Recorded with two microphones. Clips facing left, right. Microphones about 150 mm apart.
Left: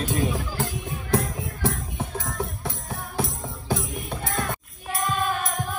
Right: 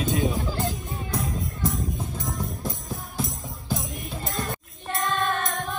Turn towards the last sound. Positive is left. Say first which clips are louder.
# even
turn(degrees=0)  # may be behind; listen again after turning